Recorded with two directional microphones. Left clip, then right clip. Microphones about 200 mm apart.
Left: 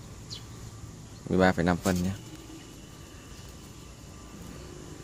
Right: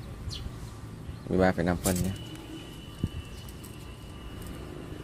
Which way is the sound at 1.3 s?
30° left (ahead or behind).